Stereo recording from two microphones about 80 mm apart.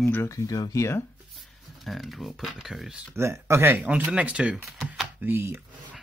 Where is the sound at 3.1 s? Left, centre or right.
Right.